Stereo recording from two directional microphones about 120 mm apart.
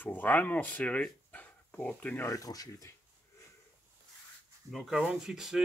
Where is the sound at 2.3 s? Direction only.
30° left (ahead or behind).